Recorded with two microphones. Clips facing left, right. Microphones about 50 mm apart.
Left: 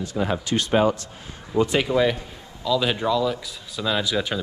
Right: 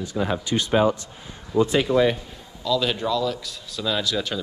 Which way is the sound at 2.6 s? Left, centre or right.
Centre.